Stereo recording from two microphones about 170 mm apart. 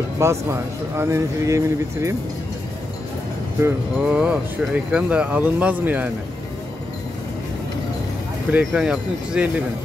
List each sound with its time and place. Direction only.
0.2 s speech: 15° right (ahead or behind)
3.6 s speech: 10° right (ahead or behind)
8.5 s speech: 5° right (ahead or behind)